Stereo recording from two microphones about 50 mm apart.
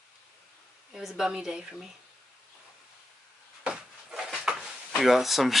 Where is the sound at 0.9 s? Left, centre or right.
Centre.